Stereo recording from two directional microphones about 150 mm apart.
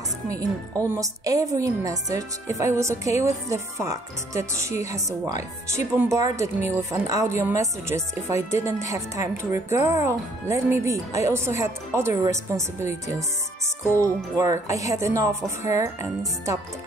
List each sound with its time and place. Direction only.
0.3 s a woman's voice: 20° right (ahead or behind)